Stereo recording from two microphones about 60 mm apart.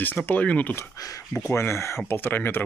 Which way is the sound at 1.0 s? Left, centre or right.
Left.